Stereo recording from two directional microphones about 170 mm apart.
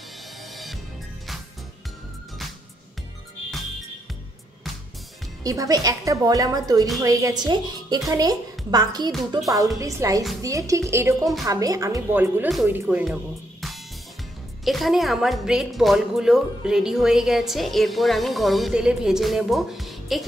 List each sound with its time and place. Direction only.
5.4 s a woman's voice: 20° right (ahead or behind); by 20.2 s centre (ahead or behind)